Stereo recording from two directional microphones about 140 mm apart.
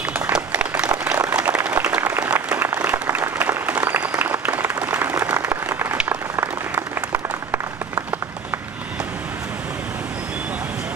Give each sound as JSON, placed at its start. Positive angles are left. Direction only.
{"t": 0.3, "sound": "applause", "side_deg": -10}